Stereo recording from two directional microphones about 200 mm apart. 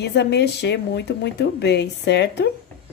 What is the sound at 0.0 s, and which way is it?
Speech, 55° left (ahead or behind).